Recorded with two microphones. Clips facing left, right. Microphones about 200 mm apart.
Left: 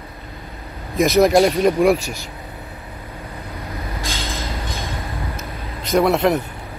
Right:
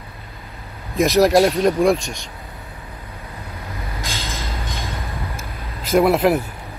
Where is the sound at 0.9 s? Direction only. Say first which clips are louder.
Even; centre (ahead or behind).